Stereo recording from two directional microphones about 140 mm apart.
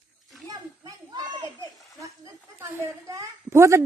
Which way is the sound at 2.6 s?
20° right (ahead or behind).